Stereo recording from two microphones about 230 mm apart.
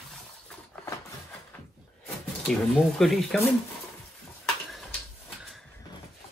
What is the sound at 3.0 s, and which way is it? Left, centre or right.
Speech, centre.